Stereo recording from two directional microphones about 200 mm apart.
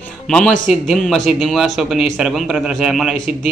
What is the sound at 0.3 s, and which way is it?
A man's voice, centre (ahead or behind).